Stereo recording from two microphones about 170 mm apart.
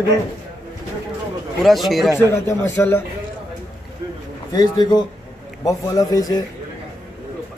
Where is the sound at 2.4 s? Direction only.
15° left (ahead or behind).